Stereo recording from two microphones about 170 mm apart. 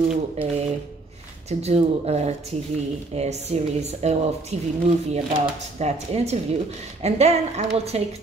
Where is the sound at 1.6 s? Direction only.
40° right (ahead or behind).